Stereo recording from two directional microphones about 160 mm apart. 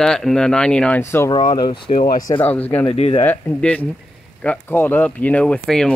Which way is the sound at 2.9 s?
40° left (ahead or behind).